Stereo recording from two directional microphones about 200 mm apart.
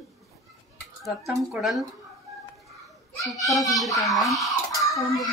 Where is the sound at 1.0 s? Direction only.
Centre (ahead or behind).